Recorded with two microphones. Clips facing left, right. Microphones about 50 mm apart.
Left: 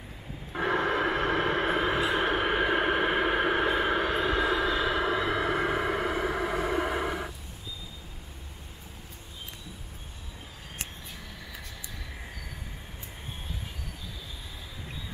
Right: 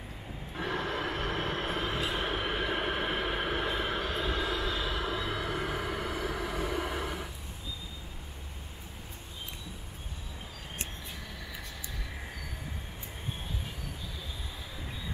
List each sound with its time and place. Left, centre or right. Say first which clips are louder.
0.5 s train: left 7 dB; left